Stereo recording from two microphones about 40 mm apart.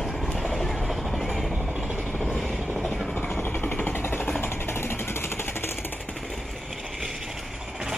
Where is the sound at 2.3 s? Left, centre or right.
Centre.